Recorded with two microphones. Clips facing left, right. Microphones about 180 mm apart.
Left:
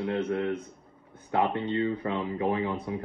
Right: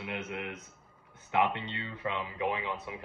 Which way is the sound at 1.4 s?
45° left (ahead or behind).